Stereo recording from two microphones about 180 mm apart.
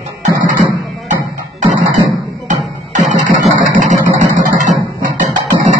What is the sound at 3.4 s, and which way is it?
Vehicle, 40° right (ahead or behind).